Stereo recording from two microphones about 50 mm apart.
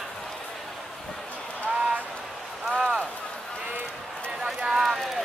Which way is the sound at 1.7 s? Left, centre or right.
Right.